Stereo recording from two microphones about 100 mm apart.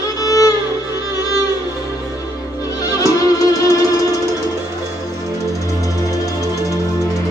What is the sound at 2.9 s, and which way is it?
Music, 35° left (ahead or behind).